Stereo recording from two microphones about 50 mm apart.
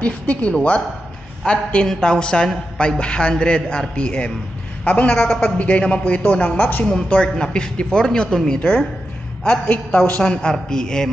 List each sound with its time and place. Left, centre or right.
0.0 s a man's voice: left
8.5 s a man's voice: left
9.9 s a woman's voice: left